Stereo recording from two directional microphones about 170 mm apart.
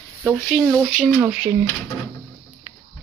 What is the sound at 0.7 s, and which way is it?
Speech, 5° left (ahead or behind).